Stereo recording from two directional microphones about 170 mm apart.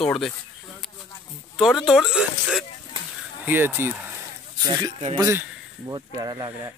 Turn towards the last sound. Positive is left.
turn(degrees=-25)  # may be behind; listen again after turning